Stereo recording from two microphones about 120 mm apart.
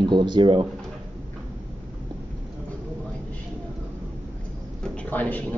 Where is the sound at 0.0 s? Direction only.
40° right (ahead or behind).